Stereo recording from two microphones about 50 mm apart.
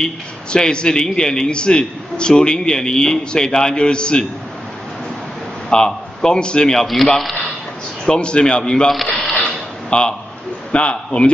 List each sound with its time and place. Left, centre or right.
0.0 s a man's voice: centre
5.7 s a man's voice: centre
7.1 s a man's voice: centre
8.0 s a man's voice: centre
9.4 s a sound: centre
10.7 s a man's voice: left